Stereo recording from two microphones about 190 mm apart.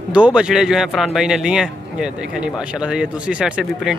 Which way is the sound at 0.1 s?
5° right (ahead or behind).